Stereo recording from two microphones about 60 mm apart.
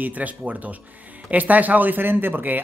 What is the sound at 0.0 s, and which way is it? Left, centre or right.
Speech, right.